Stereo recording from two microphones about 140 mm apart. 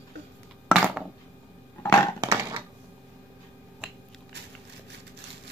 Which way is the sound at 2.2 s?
20° right (ahead or behind).